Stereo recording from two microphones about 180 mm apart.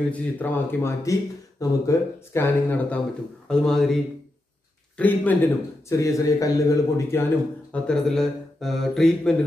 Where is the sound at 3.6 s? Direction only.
Centre (ahead or behind).